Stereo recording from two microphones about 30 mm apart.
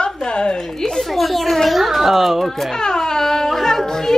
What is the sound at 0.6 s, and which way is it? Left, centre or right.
Speech, centre.